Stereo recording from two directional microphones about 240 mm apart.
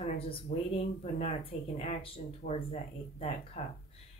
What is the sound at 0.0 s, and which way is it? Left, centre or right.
Speech, left.